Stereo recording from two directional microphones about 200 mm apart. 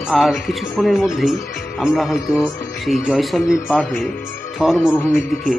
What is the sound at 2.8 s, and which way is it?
Speech, centre (ahead or behind).